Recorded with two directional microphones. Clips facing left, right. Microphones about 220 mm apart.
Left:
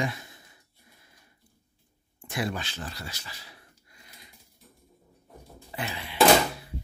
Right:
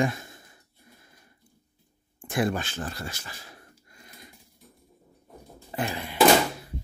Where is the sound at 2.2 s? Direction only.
50° right (ahead or behind).